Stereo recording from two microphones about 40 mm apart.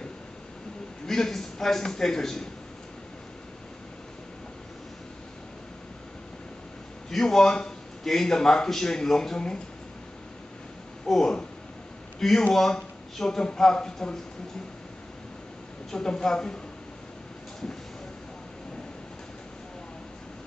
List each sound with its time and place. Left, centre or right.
1.0 s a man's voice: centre
7.1 s a man's voice: centre
11.1 s a man's voice: centre
15.9 s a man's voice: centre